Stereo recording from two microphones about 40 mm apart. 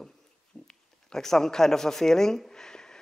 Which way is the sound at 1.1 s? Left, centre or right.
Centre.